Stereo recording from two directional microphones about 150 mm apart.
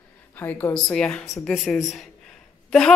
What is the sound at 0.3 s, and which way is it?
A woman's voice, 15° left (ahead or behind).